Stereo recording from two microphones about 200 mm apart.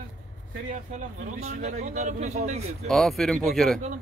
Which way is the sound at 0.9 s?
35° right (ahead or behind).